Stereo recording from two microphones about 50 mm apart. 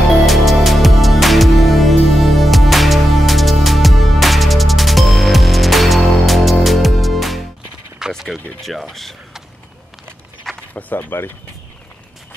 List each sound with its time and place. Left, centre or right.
0.3 s music: centre
8.0 s a sound: centre
8.6 s speech: centre
10.7 s speech: left
11.0 s speech: left